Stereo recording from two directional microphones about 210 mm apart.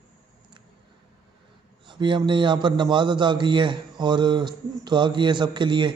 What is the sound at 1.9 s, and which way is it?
A man's voice, 20° right (ahead or behind).